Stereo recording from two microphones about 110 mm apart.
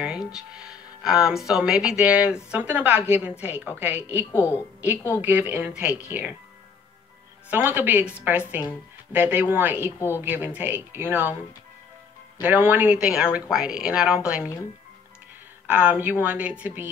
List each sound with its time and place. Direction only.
0.0 s a woman's voice: 5° right (ahead or behind)
4.3 s a woman's voice: 20° left (ahead or behind)
5.2 s a woman's voice: 15° right (ahead or behind)
7.4 s a woman's voice: 15° right (ahead or behind)
9.9 s a woman's voice: 25° left (ahead or behind)
10.2 s a woman's voice: 15° right (ahead or behind)
12.4 s a woman's voice: 15° right (ahead or behind)
13.0 s a woman's voice: 5° right (ahead or behind)
15.6 s a woman's voice: 10° right (ahead or behind)